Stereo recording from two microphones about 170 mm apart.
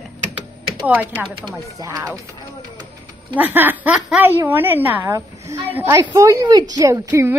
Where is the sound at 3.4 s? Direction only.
10° right (ahead or behind).